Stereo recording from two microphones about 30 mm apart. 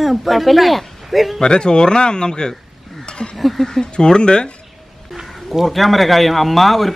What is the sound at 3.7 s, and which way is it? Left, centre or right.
Speech, left.